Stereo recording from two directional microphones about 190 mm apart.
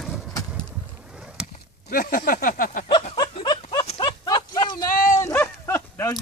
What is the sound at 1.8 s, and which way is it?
Speech, 50° left (ahead or behind).